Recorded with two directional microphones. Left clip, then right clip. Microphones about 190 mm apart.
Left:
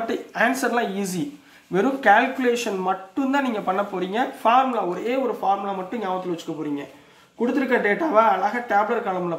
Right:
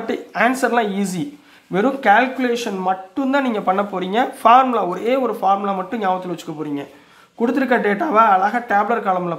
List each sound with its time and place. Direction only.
0.0 s speech: 25° right (ahead or behind); by 6.4 s 40° right (ahead or behind)
7.4 s speech: 40° right (ahead or behind)